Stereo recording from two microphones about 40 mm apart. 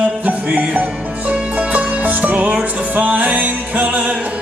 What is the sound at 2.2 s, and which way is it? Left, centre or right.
Music, right.